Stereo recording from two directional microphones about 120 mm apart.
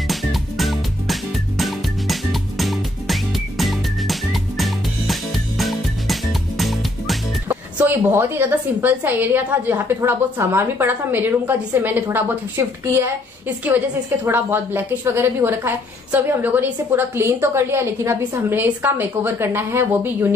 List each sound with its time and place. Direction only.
0.1 s music: centre (ahead or behind)
7.4 s a woman's voice: 15° right (ahead or behind)
14.2 s a woman's voice: 20° right (ahead or behind)